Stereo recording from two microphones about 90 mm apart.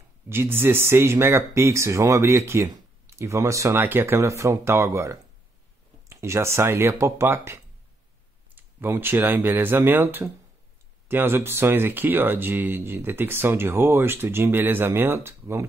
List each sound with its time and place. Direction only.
0.3 s speech: 25° right (ahead or behind)